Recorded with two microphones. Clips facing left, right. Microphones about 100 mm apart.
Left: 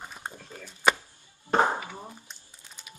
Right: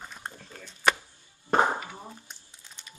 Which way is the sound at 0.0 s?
10° left (ahead or behind).